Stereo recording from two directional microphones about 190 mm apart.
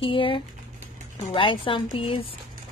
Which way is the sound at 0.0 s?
25° left (ahead or behind).